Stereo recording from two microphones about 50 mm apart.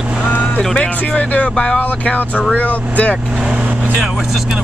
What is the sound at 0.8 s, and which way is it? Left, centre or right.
Speech, left.